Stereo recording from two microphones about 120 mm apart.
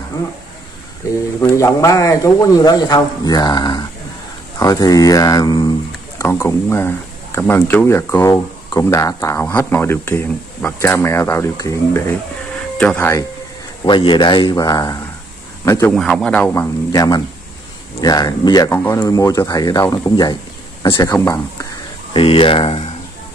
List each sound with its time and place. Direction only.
1.4 s a man's voice: 25° left (ahead or behind)
12.7 s speech: 10° left (ahead or behind)
13.8 s a man's voice: 40° left (ahead or behind); by 15.9 s 25° left (ahead or behind)
15.9 s speech: 5° left (ahead or behind)
16.5 s a man's voice: 30° left (ahead or behind)
18.8 s speech: 20° left (ahead or behind)
22.1 s speech: 50° left (ahead or behind)